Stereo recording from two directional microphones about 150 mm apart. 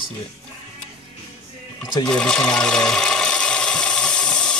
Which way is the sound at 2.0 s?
5° left (ahead or behind).